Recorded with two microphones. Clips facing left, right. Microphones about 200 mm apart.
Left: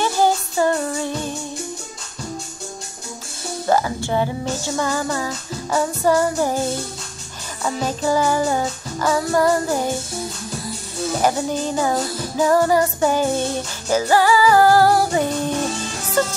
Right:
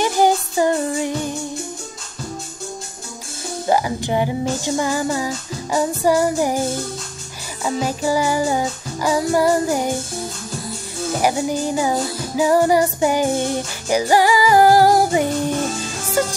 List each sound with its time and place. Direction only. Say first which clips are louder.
0.0 s music: right 2 dB; 15° right (ahead or behind)
3.6 s music: even; 15° right (ahead or behind)
7.6 s music: right 1 dB; 10° right (ahead or behind)
11.1 s music: right 1 dB; 10° right (ahead or behind)